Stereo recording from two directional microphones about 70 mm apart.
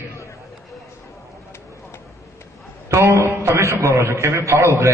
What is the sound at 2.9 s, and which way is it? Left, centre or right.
A man's voice, right.